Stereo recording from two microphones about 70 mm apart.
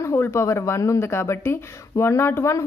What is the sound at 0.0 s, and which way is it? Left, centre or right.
Speech, left.